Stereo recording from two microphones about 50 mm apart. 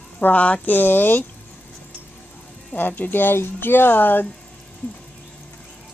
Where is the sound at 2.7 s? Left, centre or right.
Left.